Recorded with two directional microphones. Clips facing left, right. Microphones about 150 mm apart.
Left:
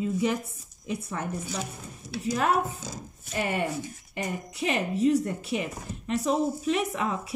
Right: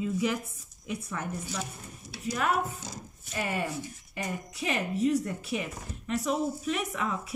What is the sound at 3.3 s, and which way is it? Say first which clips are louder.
Speech: left 3 dB; 25° left (ahead or behind).